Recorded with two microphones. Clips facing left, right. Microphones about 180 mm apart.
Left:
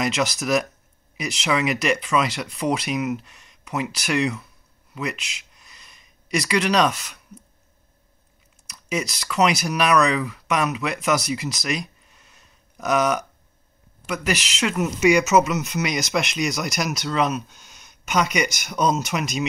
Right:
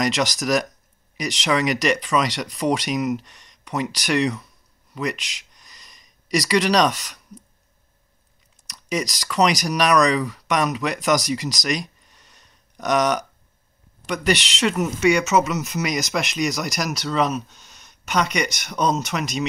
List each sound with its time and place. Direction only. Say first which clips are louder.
0.0 s speech: right 1 dB; centre (ahead or behind)
5.2 s a sound: left 1 dB; 5° left (ahead or behind)
6.3 s speech: right 2 dB; centre (ahead or behind)
8.9 s speech: right 1 dB; centre (ahead or behind)
11.3 s a sound: right 2 dB; 5° left (ahead or behind)
14.0 s speech: right 3 dB; 5° left (ahead or behind)